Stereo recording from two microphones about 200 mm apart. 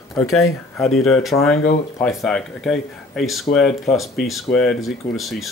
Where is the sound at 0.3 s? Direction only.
90° left.